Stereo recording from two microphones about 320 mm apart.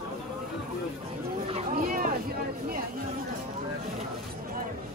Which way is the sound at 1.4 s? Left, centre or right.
Right.